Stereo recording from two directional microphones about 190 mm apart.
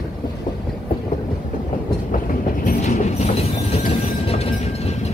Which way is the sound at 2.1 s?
45° left (ahead or behind).